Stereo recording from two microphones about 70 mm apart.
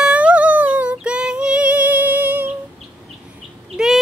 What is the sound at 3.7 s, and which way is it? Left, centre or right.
Bird, centre.